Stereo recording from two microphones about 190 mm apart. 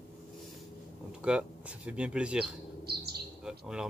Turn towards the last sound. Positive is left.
turn(degrees=-5)  # may be behind; listen again after turning